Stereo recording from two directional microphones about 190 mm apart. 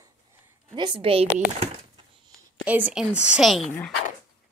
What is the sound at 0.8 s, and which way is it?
Speech, 25° right (ahead or behind).